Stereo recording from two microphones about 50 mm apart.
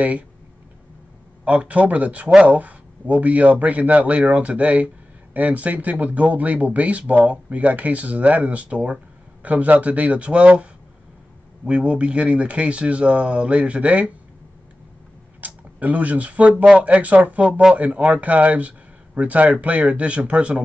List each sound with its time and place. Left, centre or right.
1.4 s speech: right
15.4 s speech: right